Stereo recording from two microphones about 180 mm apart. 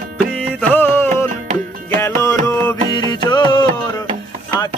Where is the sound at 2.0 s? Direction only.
15° left (ahead or behind).